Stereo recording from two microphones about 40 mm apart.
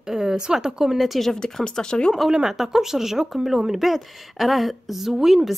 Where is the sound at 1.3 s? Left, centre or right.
Centre.